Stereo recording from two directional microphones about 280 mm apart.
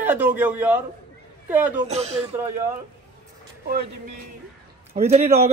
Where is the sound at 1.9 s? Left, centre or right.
Right.